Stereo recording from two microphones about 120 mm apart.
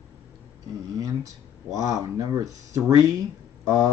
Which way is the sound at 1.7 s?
30° right (ahead or behind).